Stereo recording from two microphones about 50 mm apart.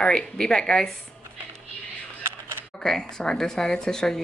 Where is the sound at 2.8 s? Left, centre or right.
Centre.